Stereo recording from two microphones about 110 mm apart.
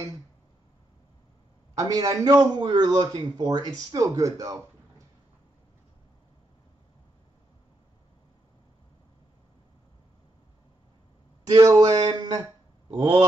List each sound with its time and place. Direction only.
1.8 s speech: 35° right (ahead or behind)
11.4 s speech: 35° right (ahead or behind)
12.9 s speech: 50° right (ahead or behind)